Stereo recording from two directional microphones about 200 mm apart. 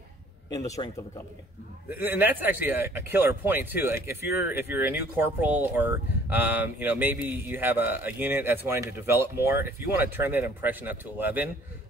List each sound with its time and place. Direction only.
0.5 s speech: 15° left (ahead or behind)
1.9 s speech: 10° right (ahead or behind)